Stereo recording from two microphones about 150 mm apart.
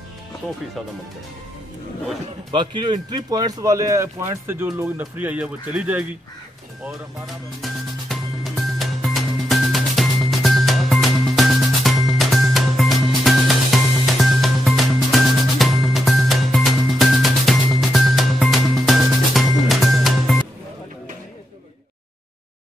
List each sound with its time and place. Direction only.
2.5 s a man's voice: 30° right (ahead or behind); by 6.0 s 10° right (ahead or behind)
7.6 s music: centre (ahead or behind)